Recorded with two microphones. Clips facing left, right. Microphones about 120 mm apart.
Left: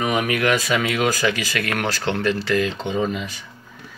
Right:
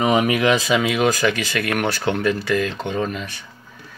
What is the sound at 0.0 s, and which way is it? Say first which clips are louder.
Speech: right 3 dB; 30° right (ahead or behind).